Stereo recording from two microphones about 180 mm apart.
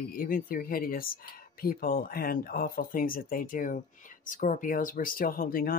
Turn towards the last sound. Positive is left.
turn(degrees=55)  # may be behind; listen again after turning